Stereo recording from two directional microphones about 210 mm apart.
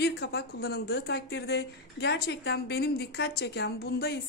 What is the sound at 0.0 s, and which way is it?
A woman's voice, 50° left (ahead or behind).